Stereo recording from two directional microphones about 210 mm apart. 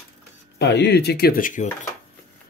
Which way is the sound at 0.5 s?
55° left (ahead or behind).